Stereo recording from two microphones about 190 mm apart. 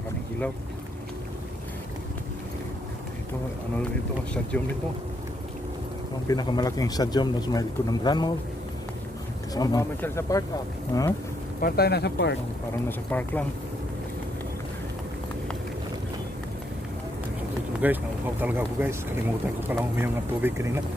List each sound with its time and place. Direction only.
6.2 s speech: 20° left (ahead or behind)
9.5 s speech: 20° left (ahead or behind)
11.6 s speech: 55° left (ahead or behind)
13.1 s speech: 10° left (ahead or behind)
17.8 s speech: 10° right (ahead or behind)